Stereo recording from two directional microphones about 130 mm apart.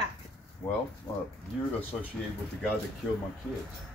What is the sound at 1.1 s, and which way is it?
Speech, 30° left (ahead or behind).